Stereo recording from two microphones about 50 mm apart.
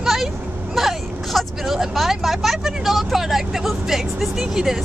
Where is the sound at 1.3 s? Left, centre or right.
Centre.